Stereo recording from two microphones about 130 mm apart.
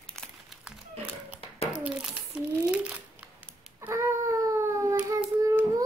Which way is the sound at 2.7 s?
10° right (ahead or behind).